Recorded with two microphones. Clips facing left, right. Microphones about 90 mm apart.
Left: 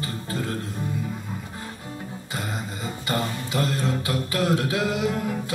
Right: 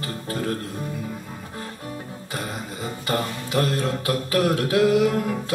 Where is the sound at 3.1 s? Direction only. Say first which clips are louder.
Right 2 dB; 20° left (ahead or behind).